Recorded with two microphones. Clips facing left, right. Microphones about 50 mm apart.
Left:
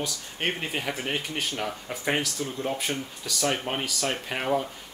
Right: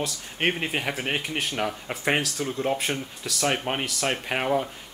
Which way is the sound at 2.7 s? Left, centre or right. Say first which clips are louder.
Right 2 dB; centre.